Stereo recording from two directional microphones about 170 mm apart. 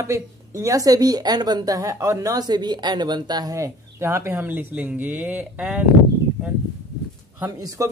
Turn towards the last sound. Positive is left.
turn(degrees=-20)  # may be behind; listen again after turning